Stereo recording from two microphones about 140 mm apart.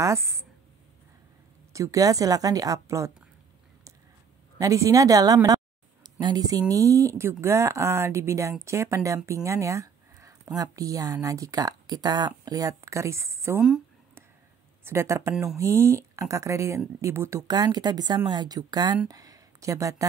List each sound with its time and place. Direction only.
0.0 s speech: 20° right (ahead or behind)
1.7 s speech: 25° right (ahead or behind)
4.6 s speech: 25° right (ahead or behind)
14.9 s speech: 20° right (ahead or behind)